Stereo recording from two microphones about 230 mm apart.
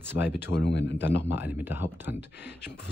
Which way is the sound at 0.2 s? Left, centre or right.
Left.